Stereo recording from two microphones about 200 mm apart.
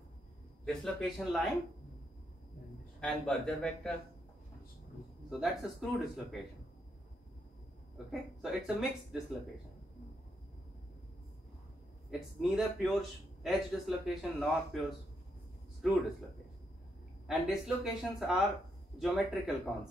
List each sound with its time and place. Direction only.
0.7 s a man's voice: centre (ahead or behind)
3.0 s a man's voice: 5° left (ahead or behind)
5.4 s a man's voice: centre (ahead or behind)
8.1 s a man's voice: centre (ahead or behind)
12.1 s a man's voice: centre (ahead or behind)
17.3 s a man's voice: centre (ahead or behind)